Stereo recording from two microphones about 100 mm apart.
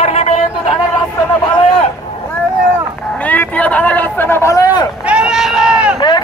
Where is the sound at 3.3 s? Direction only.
15° left (ahead or behind).